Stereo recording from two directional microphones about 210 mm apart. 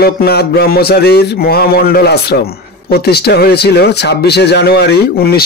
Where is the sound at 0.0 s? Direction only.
50° left (ahead or behind).